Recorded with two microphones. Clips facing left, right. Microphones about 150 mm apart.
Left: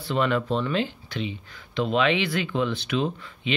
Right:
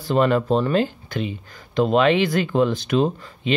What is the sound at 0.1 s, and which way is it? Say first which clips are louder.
Speech: right 6 dB; 40° right (ahead or behind).